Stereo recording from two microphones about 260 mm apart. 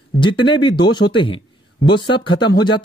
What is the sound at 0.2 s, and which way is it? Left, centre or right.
Speech, centre.